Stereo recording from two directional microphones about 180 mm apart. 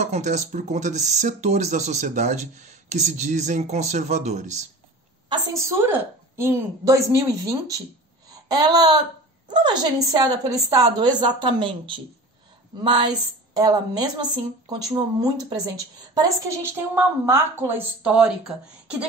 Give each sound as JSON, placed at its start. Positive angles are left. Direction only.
{"t": 0.0, "sound": "speech", "side_deg": -40}
{"t": 5.3, "sound": "a woman's voice", "side_deg": -15}